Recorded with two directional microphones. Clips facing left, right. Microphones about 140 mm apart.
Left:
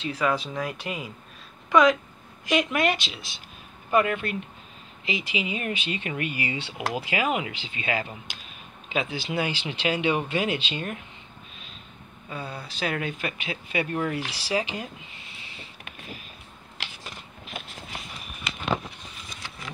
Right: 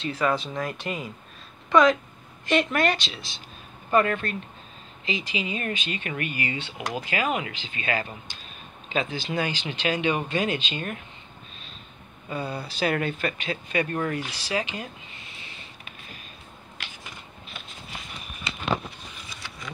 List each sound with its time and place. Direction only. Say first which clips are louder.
0.0 s speech: right 1 dB; 10° left (ahead or behind)
12.3 s speech: right 5 dB; 5° right (ahead or behind); by 14.9 s 15° left (ahead or behind)